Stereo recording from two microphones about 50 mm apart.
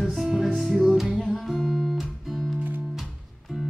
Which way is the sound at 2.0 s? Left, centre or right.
Centre.